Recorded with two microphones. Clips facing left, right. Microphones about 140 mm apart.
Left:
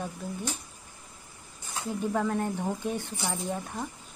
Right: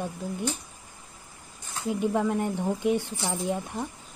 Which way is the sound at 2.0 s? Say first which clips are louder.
Right 2 dB; 15° right (ahead or behind).